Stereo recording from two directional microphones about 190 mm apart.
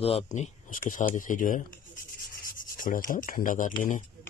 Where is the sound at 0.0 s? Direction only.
35° left (ahead or behind).